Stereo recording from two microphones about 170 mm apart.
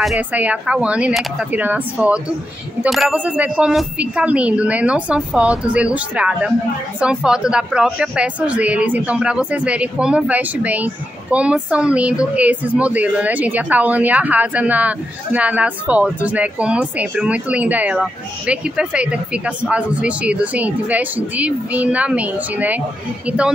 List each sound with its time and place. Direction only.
0.0 s speech: 5° right (ahead or behind)